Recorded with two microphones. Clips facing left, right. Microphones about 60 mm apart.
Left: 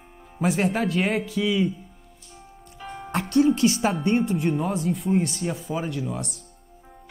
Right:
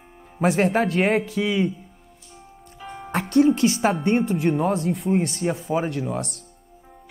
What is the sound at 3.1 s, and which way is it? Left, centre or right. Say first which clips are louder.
Speech: right 2 dB; right.